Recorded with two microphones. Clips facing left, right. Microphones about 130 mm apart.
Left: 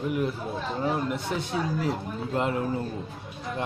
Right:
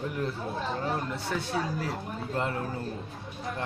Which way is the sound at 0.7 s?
15° left (ahead or behind).